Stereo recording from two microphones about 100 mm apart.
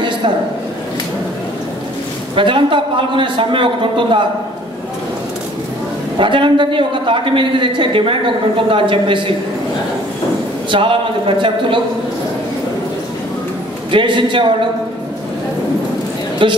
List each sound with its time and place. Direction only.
2.3 s a man's voice: 55° right (ahead or behind)
6.1 s a man's voice: 55° right (ahead or behind)
10.7 s a man's voice: 60° right (ahead or behind)
13.9 s a man's voice: 55° right (ahead or behind)
16.4 s a man's voice: 55° right (ahead or behind)